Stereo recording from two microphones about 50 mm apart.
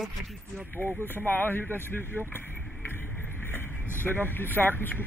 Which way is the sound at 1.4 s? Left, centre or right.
Left.